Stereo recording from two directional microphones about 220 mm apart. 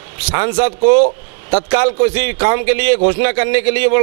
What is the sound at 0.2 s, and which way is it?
A man's voice, 10° right (ahead or behind).